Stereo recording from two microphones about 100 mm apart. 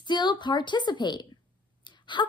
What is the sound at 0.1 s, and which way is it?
Speech, 50° left (ahead or behind).